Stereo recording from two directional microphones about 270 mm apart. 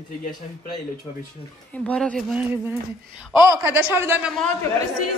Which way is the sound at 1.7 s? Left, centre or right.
Centre.